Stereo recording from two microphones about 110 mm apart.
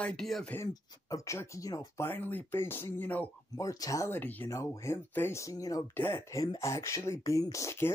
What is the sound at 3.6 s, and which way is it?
Speech, 30° left (ahead or behind).